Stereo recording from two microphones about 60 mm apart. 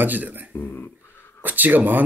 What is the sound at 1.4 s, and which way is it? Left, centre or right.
Music, right.